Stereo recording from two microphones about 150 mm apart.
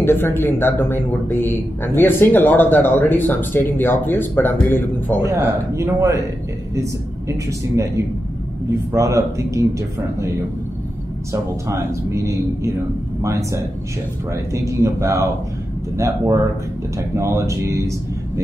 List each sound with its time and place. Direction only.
0.0 s speech: 15° left (ahead or behind)
5.2 s speech: 20° right (ahead or behind)
8.9 s speech: 20° right (ahead or behind)
11.6 s speech: 20° right (ahead or behind)
17.1 s speech: 20° right (ahead or behind)